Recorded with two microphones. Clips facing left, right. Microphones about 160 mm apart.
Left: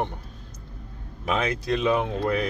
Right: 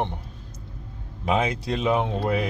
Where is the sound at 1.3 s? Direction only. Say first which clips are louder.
Right 1 dB; 20° right (ahead or behind).